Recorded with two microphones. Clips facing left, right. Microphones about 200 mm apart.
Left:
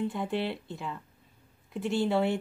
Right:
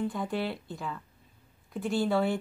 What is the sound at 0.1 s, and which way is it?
A woman's voice, 25° left (ahead or behind).